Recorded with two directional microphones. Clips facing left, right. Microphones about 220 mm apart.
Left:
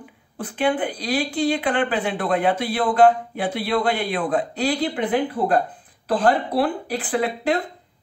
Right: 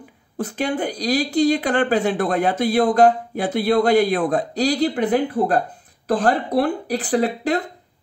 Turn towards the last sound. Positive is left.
turn(degrees=-40)  # may be behind; listen again after turning